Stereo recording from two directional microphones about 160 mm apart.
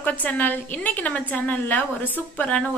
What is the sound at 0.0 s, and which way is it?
A woman's voice, 10° left (ahead or behind).